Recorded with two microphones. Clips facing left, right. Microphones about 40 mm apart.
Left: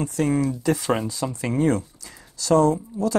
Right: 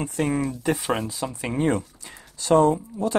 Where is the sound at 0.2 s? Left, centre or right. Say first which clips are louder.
Left 2 dB; right.